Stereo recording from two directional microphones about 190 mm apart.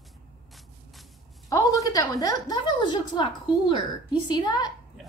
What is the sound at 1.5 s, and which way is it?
A woman's voice, 20° left (ahead or behind).